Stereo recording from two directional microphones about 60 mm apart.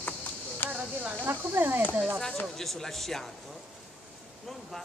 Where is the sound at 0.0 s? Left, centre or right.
Left.